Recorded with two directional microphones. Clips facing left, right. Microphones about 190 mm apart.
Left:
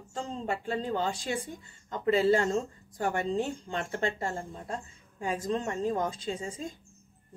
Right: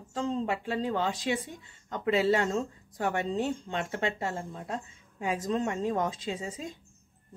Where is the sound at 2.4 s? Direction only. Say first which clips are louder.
Left 1 dB; centre (ahead or behind).